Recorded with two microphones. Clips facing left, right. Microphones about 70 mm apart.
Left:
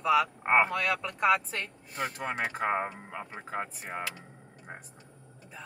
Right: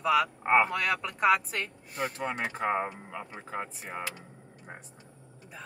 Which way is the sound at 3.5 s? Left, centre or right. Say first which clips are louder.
Left 1 dB; centre.